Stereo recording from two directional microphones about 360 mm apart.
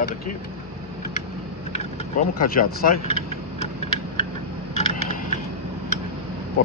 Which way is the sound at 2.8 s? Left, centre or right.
Left.